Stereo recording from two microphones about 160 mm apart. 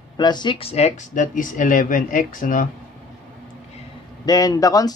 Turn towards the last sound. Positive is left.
turn(degrees=20)  # may be behind; listen again after turning